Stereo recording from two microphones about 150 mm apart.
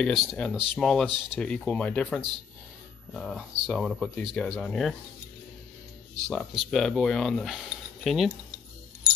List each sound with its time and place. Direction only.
0.0 s speech: centre (ahead or behind)
6.2 s speech: centre (ahead or behind)